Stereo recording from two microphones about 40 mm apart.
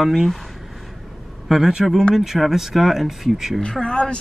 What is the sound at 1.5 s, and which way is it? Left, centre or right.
Speech, centre.